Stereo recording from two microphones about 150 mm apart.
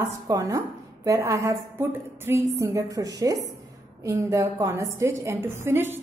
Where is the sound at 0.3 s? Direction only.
20° right (ahead or behind).